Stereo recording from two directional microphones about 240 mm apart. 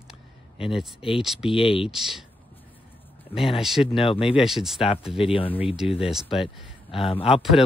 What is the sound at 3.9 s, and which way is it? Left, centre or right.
Speech, left.